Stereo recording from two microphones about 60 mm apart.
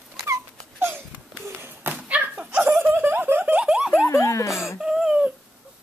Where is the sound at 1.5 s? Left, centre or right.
Right.